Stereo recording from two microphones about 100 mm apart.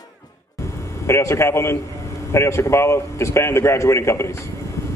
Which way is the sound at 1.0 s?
25° left (ahead or behind).